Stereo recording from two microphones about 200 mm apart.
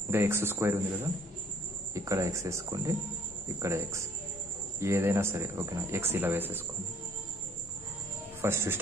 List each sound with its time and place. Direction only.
0.1 s speech: 10° right (ahead or behind)
2.0 s speech: 15° right (ahead or behind)
8.4 s speech: 10° right (ahead or behind)